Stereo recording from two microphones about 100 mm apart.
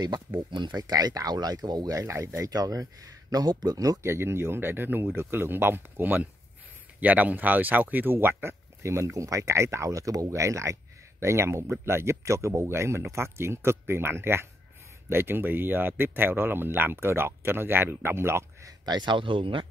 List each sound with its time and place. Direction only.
0.7 s speech: 40° right (ahead or behind)
4.0 s speech: 25° right (ahead or behind); by 19.6 s 60° right (ahead or behind)